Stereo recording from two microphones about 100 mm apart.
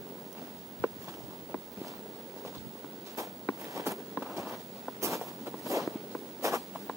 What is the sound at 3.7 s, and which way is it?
Walk, 30° right (ahead or behind).